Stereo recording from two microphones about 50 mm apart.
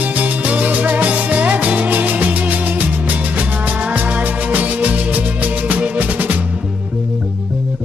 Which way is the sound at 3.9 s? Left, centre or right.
Right.